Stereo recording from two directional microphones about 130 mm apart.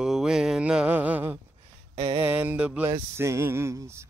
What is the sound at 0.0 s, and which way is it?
Mantra, 5° right (ahead or behind).